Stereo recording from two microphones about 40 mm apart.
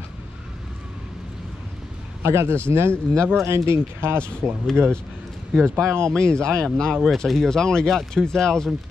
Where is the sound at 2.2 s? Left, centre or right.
Right.